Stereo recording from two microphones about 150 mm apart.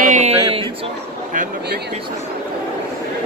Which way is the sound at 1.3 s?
60° right (ahead or behind).